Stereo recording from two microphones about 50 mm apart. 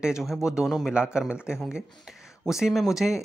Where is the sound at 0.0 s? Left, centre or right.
Centre.